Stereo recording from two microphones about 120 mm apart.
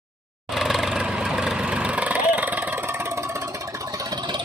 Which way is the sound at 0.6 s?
Centre (ahead or behind).